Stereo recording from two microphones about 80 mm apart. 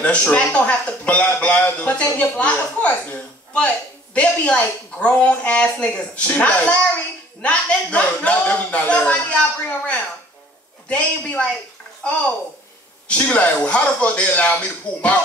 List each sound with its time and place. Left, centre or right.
0.0 s speech: centre